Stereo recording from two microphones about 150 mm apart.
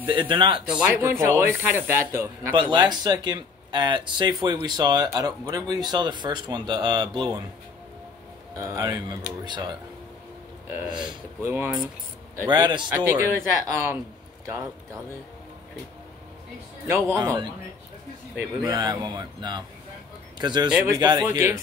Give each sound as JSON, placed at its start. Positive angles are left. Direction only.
{"t": 0.0, "sound": "speech", "side_deg": -35}
{"t": 0.7, "sound": "speech", "side_deg": -10}
{"t": 2.5, "sound": "speech", "side_deg": -30}
{"t": 8.5, "sound": "speech", "side_deg": -20}
{"t": 10.7, "sound": "speech", "side_deg": -10}
{"t": 12.4, "sound": "speech", "side_deg": -30}
{"t": 13.0, "sound": "speech", "side_deg": -15}
{"t": 16.8, "sound": "speech", "side_deg": -20}
{"t": 18.6, "sound": "speech", "side_deg": -25}